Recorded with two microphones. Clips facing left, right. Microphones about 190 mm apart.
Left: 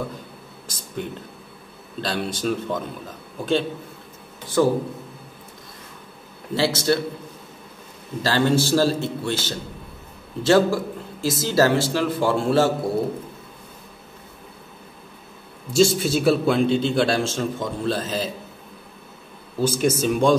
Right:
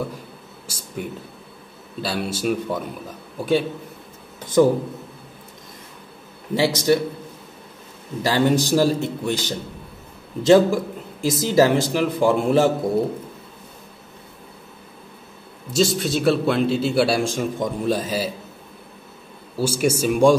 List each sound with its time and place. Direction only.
0.7 s a sound: 10° right (ahead or behind)
2.0 s a man's voice: 5° right (ahead or behind)
6.5 s a man's voice: 15° right (ahead or behind)
8.2 s a man's voice: 15° right (ahead or behind)
15.7 s a man's voice: centre (ahead or behind)
19.5 s a man's voice: 10° right (ahead or behind)